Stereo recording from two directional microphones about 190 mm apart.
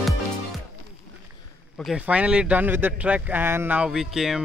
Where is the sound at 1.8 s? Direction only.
5° right (ahead or behind).